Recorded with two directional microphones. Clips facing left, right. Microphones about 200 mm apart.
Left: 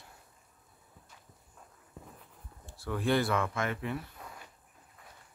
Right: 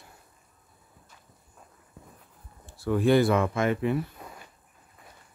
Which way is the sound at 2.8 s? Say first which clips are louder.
Right 8 dB; 10° right (ahead or behind).